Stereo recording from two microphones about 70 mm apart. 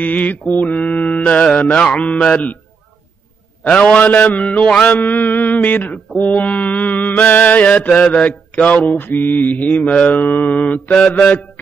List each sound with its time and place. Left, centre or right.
0.0 s mantra: left
3.6 s mantra: centre